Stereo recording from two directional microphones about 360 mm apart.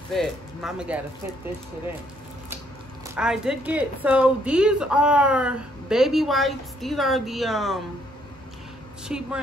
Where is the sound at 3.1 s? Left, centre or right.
Centre.